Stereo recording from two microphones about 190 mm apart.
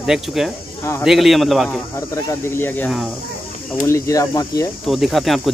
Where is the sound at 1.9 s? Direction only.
15° left (ahead or behind).